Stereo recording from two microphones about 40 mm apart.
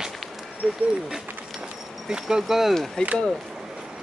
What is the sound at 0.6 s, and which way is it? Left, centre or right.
Speech, centre.